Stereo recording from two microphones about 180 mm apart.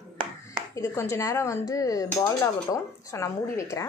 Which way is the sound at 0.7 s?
15° left (ahead or behind).